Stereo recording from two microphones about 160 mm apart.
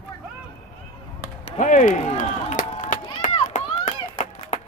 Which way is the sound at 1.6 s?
55° left (ahead or behind).